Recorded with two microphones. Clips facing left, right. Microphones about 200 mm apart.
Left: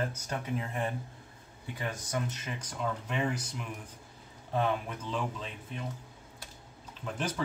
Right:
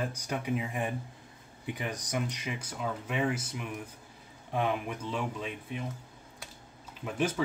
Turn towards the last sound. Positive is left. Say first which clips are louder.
# right 4 dB
turn(degrees=-10)  # may be behind; listen again after turning